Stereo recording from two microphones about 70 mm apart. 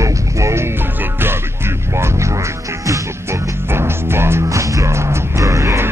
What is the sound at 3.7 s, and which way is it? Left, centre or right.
Music, right.